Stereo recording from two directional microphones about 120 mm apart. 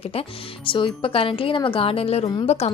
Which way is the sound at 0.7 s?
45° left (ahead or behind).